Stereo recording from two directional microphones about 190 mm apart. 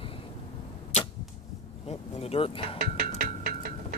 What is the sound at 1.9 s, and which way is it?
Vehicle, 30° left (ahead or behind).